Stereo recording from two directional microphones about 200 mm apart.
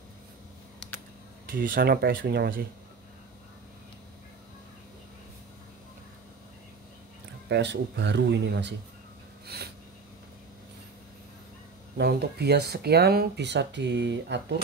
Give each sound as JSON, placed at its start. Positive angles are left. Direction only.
{"t": 1.6, "sound": "speech", "side_deg": -45}
{"t": 7.4, "sound": "speech", "side_deg": -60}
{"t": 12.0, "sound": "speech", "side_deg": -55}